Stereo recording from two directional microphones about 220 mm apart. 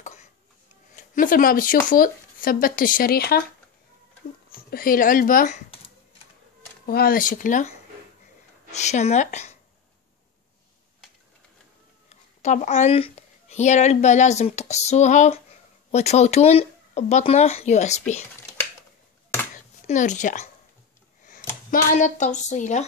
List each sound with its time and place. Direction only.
1.1 s speech: 40° left (ahead or behind)
4.5 s speech: 40° left (ahead or behind)
6.9 s speech: 45° left (ahead or behind)
8.7 s speech: 30° left (ahead or behind)
12.1 s speech: 30° left (ahead or behind)
19.5 s a sound: 35° left (ahead or behind)
21.6 s speech: 35° left (ahead or behind)